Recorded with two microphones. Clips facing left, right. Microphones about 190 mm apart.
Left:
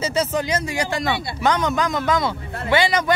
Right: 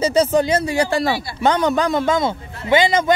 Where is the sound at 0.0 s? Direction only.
30° right (ahead or behind).